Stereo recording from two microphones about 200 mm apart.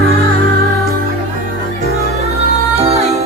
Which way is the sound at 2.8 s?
30° right (ahead or behind).